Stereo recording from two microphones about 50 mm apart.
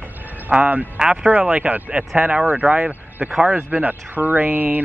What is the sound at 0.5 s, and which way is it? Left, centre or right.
Speech, right.